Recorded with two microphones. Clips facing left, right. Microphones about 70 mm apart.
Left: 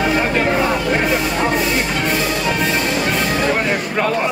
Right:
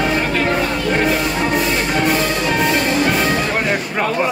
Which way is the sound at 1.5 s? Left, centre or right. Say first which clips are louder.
Right 1 dB; centre.